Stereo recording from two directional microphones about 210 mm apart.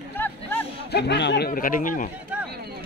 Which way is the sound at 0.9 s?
55° left (ahead or behind).